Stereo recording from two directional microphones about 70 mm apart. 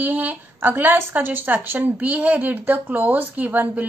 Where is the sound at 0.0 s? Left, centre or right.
Right.